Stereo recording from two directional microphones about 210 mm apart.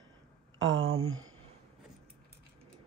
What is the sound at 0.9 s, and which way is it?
Speech, 75° right (ahead or behind).